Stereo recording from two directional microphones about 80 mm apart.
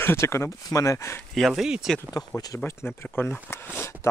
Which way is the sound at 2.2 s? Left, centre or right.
Left.